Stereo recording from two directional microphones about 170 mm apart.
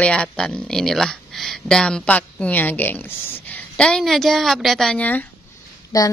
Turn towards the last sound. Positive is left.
turn(degrees=20)  # may be behind; listen again after turning